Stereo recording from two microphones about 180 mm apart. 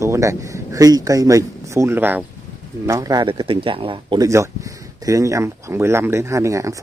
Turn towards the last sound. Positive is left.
turn(degrees=-15)  # may be behind; listen again after turning